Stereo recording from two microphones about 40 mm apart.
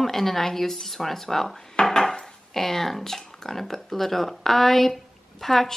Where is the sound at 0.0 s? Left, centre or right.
Centre.